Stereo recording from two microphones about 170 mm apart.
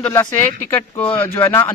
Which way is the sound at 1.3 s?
15° left (ahead or behind).